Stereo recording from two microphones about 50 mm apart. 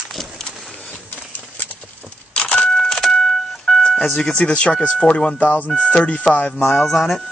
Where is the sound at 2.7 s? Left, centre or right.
Centre.